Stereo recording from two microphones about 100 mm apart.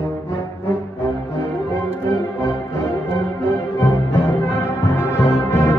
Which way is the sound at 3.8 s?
25° left (ahead or behind).